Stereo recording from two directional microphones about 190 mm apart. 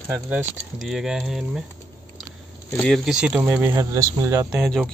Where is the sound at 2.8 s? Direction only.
Centre (ahead or behind); by 4.5 s 15° right (ahead or behind).